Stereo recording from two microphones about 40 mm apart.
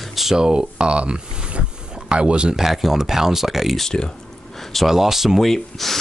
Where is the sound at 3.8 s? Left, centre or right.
Centre.